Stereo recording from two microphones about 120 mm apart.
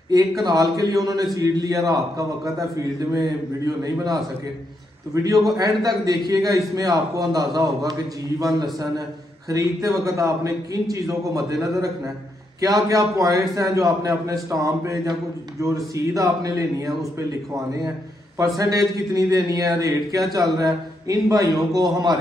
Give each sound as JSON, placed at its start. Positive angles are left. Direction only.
{"t": 0.4, "sound": "a man's voice", "side_deg": -30}
{"t": 18.4, "sound": "a man's voice", "side_deg": -30}